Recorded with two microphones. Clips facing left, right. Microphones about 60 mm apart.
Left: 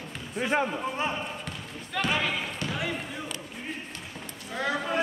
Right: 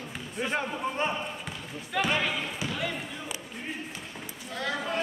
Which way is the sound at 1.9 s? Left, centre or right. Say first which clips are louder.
Even; centre.